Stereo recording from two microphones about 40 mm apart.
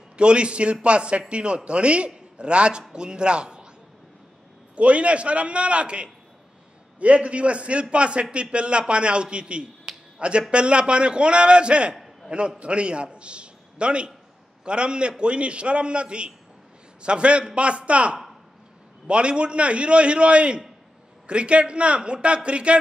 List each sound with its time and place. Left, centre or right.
0.2 s a man's voice: right
4.7 s a man's voice: right